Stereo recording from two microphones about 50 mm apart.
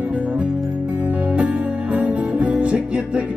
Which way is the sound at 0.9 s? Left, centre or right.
Right.